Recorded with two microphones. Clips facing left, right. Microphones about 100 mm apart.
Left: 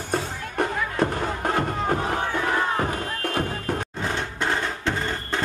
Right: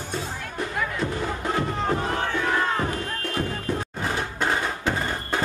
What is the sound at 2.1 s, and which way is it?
Crowd, 15° left (ahead or behind).